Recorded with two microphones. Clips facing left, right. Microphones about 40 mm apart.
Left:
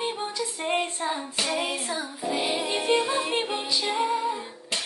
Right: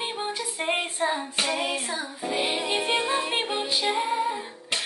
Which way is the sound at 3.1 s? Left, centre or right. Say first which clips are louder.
Even; right.